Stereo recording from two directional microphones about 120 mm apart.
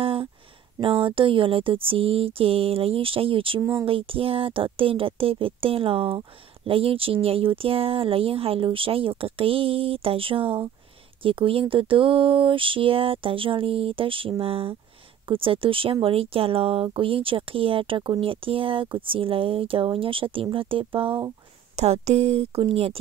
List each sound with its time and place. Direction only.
0.0 s a sound: 50° right (ahead or behind)
0.7 s speech: 45° right (ahead or behind)
21.7 s speech: 60° right (ahead or behind)